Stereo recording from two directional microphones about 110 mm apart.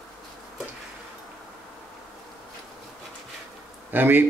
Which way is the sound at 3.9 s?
20° right (ahead or behind).